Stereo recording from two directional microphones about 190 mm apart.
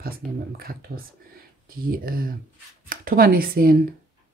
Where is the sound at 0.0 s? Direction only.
50° right (ahead or behind).